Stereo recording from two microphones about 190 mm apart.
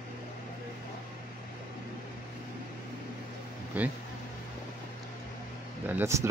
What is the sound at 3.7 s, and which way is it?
Speech, 10° right (ahead or behind).